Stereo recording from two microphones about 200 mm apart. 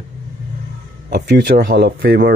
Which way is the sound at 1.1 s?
50° right (ahead or behind).